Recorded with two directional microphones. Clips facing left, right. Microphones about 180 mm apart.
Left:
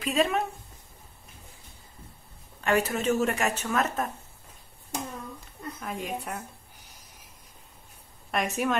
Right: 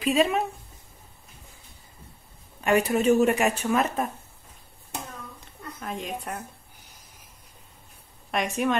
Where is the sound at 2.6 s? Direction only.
15° right (ahead or behind).